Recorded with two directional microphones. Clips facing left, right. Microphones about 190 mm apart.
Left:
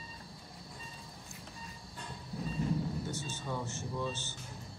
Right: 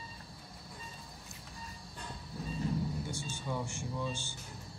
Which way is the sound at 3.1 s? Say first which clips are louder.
Even; 10° right (ahead or behind).